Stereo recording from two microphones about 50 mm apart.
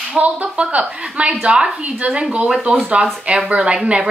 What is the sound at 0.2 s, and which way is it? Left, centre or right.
A woman's voice, right.